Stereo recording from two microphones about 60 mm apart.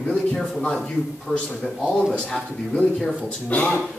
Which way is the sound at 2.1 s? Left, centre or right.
Centre.